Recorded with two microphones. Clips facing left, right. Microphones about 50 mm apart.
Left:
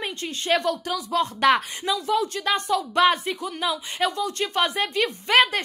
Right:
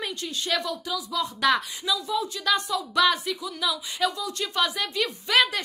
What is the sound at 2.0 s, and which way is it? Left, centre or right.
Speech, left.